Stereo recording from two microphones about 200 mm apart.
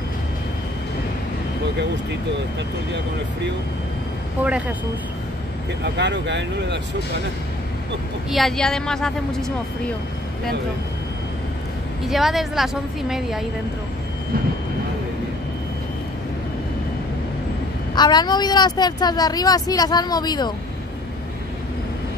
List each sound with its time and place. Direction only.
4.4 s a woman's voice: 5° right (ahead or behind)
5.9 s speech: 60° right (ahead or behind)
8.3 s a woman's voice: centre (ahead or behind)
12.1 s a woman's voice: centre (ahead or behind)
17.9 s speech: 20° left (ahead or behind)